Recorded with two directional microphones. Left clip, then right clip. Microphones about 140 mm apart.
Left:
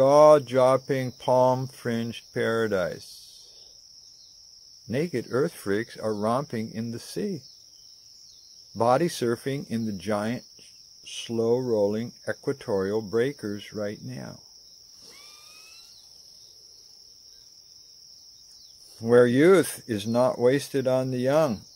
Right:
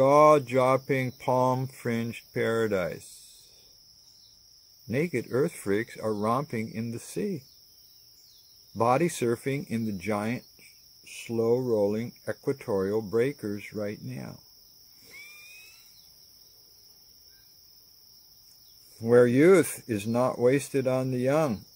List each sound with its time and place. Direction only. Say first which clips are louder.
0.0 s speech: left 3 dB; 25° right (ahead or behind)
4.9 s speech: left 1 dB; 20° right (ahead or behind)
8.7 s speech: left 2 dB; 15° right (ahead or behind)
11.3 s speech: left 1 dB; 5° right (ahead or behind)
11.7 s speech: left 2 dB; 20° right (ahead or behind)
19.2 s speech: left 1 dB; 20° right (ahead or behind)
19.6 s speech: left 1 dB; centre (ahead or behind)
20.2 s speech: left 3 dB; 20° right (ahead or behind)
21.1 s speech: left 2 dB; 5° right (ahead or behind)